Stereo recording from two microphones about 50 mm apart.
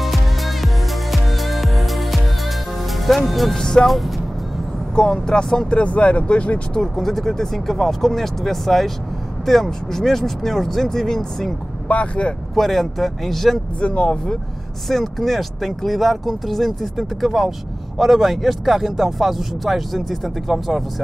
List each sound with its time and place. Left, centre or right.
0.0 s music: centre
3.3 s speech: centre
3.5 s speech: centre
4.9 s speech: centre
5.7 s speech: left
6.8 s speech: centre
11.9 s speech: left
12.5 s speech: centre
13.7 s speech: left
14.9 s speech: centre